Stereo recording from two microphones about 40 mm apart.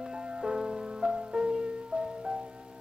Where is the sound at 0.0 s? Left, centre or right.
Centre.